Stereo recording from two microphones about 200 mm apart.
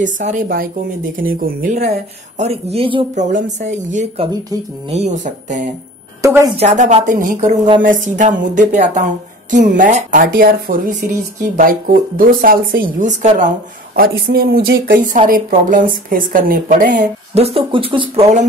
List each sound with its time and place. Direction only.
0.0 s speech: 40° right (ahead or behind)
4.3 s speech: 20° right (ahead or behind)
4.9 s speech: 35° right (ahead or behind)
6.2 s a woman's voice: 15° right (ahead or behind)
6.6 s a woman's voice: 35° right (ahead or behind)